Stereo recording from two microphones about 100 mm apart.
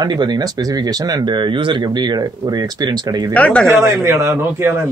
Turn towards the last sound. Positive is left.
turn(degrees=-30)  # may be behind; listen again after turning